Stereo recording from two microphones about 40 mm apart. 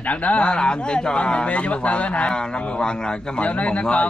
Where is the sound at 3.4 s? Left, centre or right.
Left.